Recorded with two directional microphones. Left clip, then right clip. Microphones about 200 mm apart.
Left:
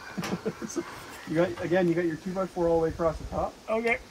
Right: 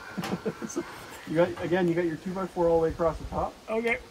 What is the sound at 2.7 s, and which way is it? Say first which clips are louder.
Speech: right 1 dB; 15° right (ahead or behind).